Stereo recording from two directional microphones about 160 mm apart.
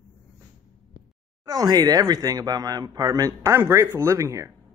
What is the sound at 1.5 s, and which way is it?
Speech, 25° right (ahead or behind).